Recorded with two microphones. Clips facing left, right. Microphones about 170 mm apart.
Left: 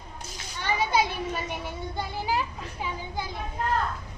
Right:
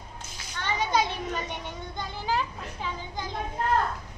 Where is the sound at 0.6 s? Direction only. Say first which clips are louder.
Left 1 dB; 10° left (ahead or behind).